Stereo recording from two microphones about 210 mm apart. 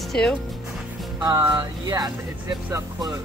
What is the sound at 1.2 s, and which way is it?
Speech, 15° right (ahead or behind).